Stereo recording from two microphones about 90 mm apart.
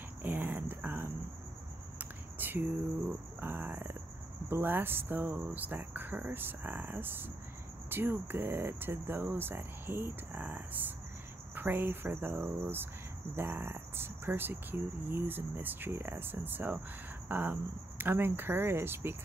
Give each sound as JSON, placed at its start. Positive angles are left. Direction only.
{"t": 0.2, "sound": "a sound", "side_deg": -20}
{"t": 4.5, "sound": "speech", "side_deg": -25}
{"t": 13.4, "sound": "speech", "side_deg": -25}